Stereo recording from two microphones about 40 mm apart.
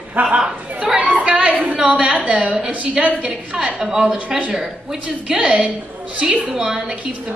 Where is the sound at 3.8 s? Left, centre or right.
Centre.